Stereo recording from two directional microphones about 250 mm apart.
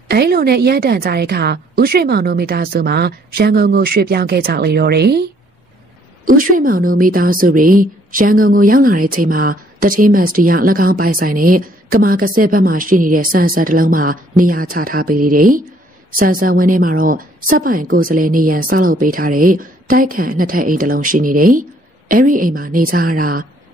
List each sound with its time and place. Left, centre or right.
0.1 s a woman's voice: right
6.2 s a woman's voice: right